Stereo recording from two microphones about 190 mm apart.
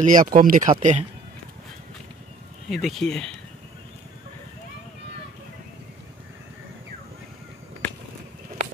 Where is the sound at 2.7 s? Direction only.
Centre (ahead or behind).